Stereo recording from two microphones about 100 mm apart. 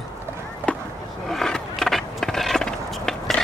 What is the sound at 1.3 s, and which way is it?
Skateboard, 5° left (ahead or behind).